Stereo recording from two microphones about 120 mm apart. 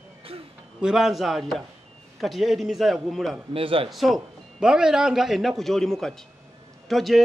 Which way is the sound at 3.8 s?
Centre (ahead or behind).